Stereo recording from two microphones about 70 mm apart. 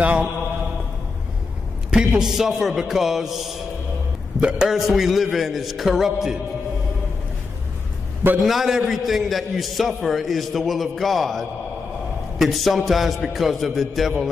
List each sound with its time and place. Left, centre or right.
0.0 s mantra: right
1.9 s a man's voice: centre
4.4 s a man's voice: centre
4.7 s a man's voice: centre
8.5 s a man's voice: centre